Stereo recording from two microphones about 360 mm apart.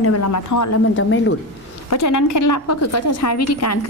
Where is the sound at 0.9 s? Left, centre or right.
Left.